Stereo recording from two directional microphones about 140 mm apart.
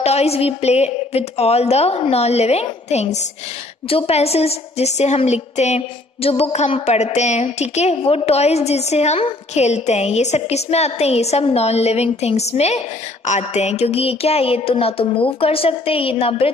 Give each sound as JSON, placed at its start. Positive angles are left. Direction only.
{"t": 0.0, "sound": "a woman's voice", "side_deg": 50}